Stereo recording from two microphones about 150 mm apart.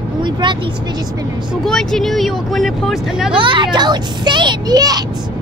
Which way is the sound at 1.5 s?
5° left (ahead or behind).